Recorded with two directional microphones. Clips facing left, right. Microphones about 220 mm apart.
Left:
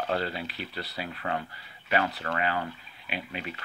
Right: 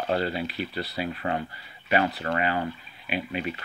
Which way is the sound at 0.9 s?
20° right (ahead or behind).